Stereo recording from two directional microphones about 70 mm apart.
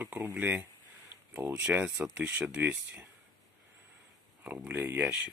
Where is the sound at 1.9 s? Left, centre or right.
Centre.